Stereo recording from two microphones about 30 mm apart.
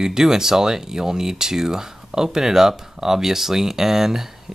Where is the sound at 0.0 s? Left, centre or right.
Centre.